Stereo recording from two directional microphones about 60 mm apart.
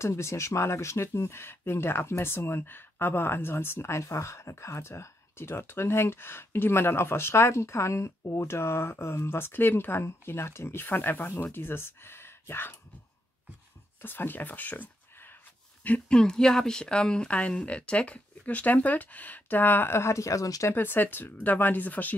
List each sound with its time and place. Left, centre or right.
0.0 s speech: left
11.2 s speech: left
11.5 s speech: left
14.0 s speech: left
16.1 s speech: centre; by 19.9 s left
19.9 s speech: left
20.7 s speech: left